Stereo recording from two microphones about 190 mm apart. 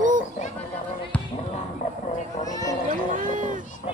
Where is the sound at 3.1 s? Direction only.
45° right (ahead or behind).